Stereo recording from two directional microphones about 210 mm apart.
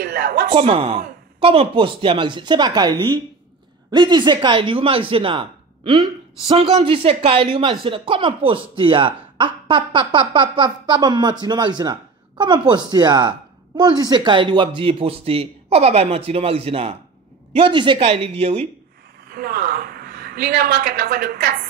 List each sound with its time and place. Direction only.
0.0 s a woman's voice: 45° right (ahead or behind)
0.6 s speech: 25° right (ahead or behind)
19.2 s a woman's voice: 45° right (ahead or behind)